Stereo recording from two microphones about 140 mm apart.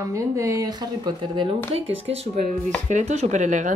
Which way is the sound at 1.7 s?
45° right (ahead or behind).